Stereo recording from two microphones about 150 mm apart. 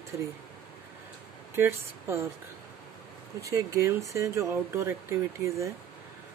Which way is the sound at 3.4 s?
20° right (ahead or behind).